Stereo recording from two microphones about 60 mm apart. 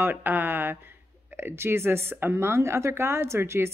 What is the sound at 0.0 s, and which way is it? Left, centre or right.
Speech, right.